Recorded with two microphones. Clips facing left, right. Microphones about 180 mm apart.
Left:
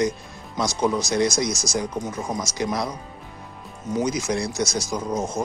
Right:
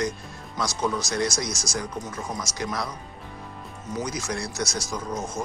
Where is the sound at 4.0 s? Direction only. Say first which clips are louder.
Left 6 dB; 15° left (ahead or behind).